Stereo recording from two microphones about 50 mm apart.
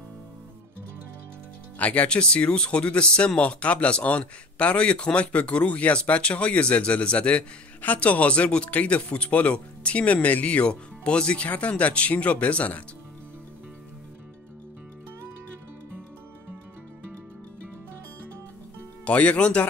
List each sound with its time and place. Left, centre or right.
1.8 s speech: left
19.0 s speech: left